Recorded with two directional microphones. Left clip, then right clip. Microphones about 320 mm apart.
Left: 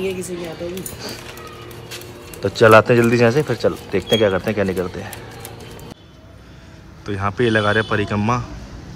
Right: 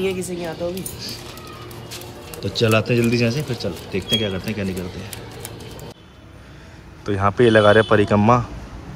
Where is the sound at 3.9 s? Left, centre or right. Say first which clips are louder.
Left 4 dB; centre.